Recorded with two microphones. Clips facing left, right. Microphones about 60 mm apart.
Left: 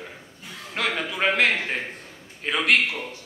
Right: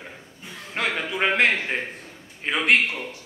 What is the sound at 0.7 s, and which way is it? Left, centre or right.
A man's voice, centre.